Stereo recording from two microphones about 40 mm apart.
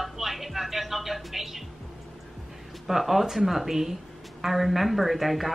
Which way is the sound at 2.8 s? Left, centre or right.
Centre.